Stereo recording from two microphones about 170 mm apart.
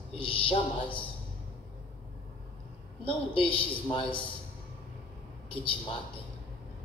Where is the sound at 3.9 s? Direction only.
30° left (ahead or behind).